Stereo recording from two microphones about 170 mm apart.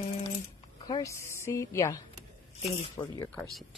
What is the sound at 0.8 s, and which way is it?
A woman's voice, 20° left (ahead or behind).